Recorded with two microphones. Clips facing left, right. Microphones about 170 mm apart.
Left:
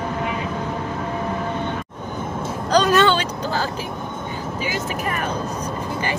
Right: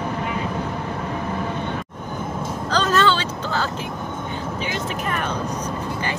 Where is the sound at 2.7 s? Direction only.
15° left (ahead or behind).